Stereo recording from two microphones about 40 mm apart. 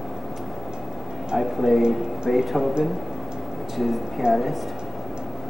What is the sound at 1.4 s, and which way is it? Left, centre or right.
Speech, centre.